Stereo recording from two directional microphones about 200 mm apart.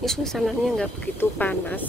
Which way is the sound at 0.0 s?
Centre (ahead or behind).